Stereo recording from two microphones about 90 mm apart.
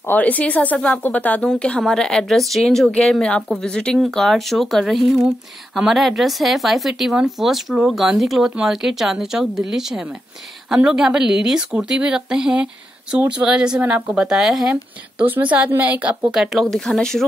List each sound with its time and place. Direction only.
0.0 s speech: 20° left (ahead or behind); by 14.8 s 5° right (ahead or behind)
15.1 s speech: 20° right (ahead or behind)
16.3 s speech: centre (ahead or behind)